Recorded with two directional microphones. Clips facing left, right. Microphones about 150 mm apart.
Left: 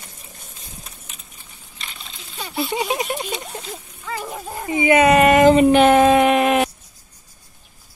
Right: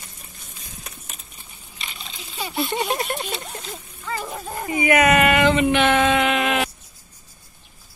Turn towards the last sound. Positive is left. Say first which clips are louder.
# left 5 dB
turn(degrees=40)  # may be behind; listen again after turning